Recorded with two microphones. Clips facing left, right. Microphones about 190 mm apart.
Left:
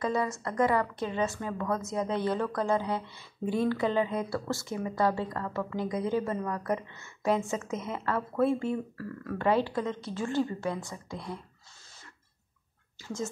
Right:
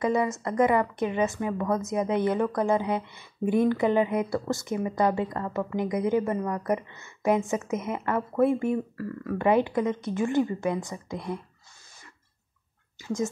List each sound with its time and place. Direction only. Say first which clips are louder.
0.0 s a woman's voice: right 4 dB; 20° right (ahead or behind)
13.0 s speech: right 6 dB; 15° right (ahead or behind)